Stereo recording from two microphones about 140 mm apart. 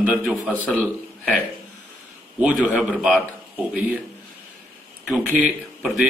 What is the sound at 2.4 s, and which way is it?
Speech, 10° right (ahead or behind).